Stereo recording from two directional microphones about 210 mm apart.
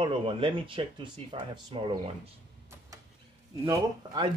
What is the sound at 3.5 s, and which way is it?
Speech, 15° right (ahead or behind).